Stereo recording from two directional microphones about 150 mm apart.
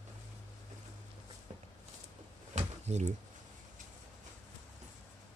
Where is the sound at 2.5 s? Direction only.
50° right (ahead or behind).